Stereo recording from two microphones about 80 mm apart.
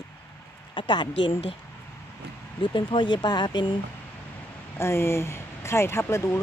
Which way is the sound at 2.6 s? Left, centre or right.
Left.